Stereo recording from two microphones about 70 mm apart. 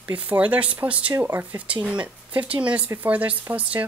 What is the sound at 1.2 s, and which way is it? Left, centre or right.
Speech, right.